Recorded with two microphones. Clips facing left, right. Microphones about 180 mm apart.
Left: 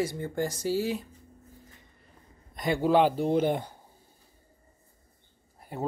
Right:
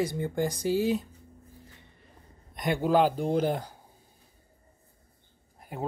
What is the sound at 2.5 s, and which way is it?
Speech, centre (ahead or behind).